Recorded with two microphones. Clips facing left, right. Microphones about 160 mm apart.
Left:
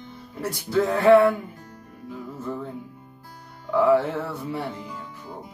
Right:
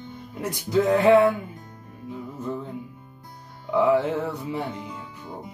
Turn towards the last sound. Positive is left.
turn(degrees=-20)  # may be behind; listen again after turning